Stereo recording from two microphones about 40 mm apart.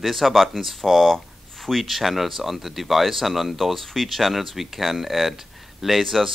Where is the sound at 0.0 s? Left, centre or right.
Centre.